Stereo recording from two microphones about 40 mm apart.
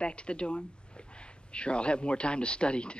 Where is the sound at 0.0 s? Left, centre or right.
Left.